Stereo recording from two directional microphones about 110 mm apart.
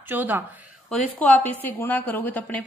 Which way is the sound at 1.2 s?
15° left (ahead or behind).